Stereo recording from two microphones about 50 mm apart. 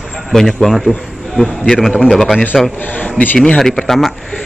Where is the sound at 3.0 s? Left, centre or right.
Left.